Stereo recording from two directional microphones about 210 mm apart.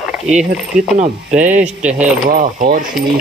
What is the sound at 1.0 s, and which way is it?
Speech, 35° right (ahead or behind).